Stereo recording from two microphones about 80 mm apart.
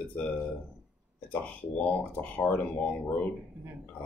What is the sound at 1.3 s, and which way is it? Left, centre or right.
Speech, centre.